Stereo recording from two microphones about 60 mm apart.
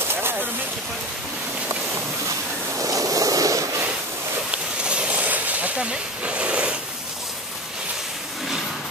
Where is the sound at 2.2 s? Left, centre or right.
Right.